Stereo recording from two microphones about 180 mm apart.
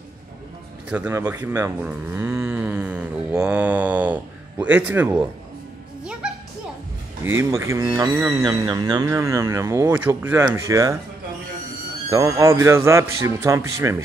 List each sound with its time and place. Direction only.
0.8 s speech: 5° right (ahead or behind)
7.3 s speech: 15° right (ahead or behind)
12.1 s speech: 20° right (ahead or behind)